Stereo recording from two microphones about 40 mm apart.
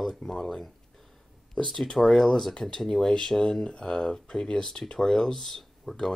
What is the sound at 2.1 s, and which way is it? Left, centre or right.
Speech, centre.